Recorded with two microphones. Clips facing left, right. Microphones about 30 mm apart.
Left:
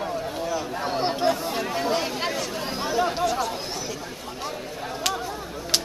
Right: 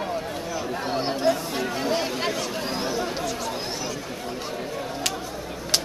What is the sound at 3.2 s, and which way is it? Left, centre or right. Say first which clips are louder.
Chatter: left 5 dB; centre.